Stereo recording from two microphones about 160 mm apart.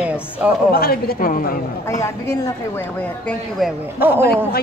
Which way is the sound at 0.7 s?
70° left (ahead or behind).